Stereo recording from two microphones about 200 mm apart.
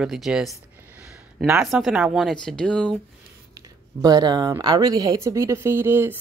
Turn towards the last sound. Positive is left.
turn(degrees=-10)  # may be behind; listen again after turning